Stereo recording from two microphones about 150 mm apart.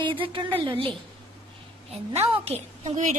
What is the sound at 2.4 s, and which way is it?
Speech, 40° right (ahead or behind).